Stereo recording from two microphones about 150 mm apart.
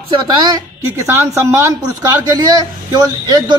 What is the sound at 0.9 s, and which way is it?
A woman's voice, 15° right (ahead or behind).